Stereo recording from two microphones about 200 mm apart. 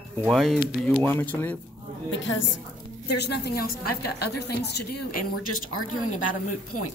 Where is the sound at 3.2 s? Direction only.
55° left (ahead or behind).